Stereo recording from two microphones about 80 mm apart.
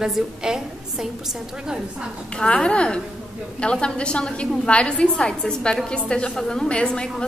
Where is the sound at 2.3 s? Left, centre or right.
Centre.